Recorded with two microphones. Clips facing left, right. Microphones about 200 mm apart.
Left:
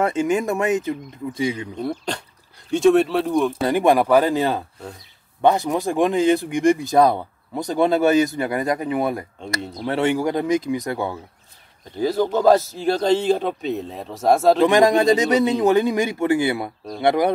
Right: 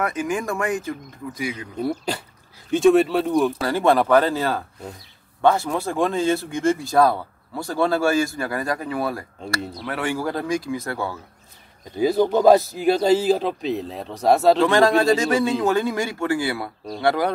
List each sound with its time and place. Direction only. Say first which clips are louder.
0.0 s speech: left 4 dB; 25° left (ahead or behind)
1.8 s speech: right 1 dB; 5° right (ahead or behind)
3.6 s speech: left 2 dB; 15° left (ahead or behind)
12.0 s speech: right 2 dB; 15° right (ahead or behind)
14.6 s speech: left 2 dB; 15° left (ahead or behind)